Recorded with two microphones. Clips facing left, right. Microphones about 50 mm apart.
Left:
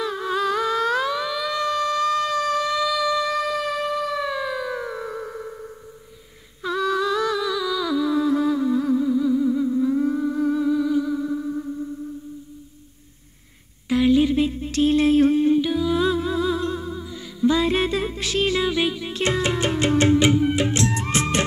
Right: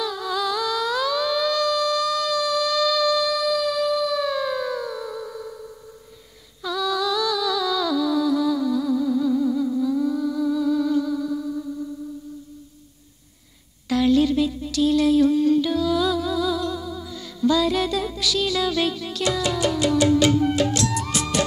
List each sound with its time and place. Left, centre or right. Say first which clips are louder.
0.0 s a sound: left 2 dB; left
6.6 s music: left 2 dB; left
9.1 s humming: left 1 dB; centre; by 10.7 s left
10.7 s music: even; left
13.8 s a sound: left 1 dB; left
15.5 s music: even; left
17.0 s music: left 2 dB; left
17.6 s music: even; left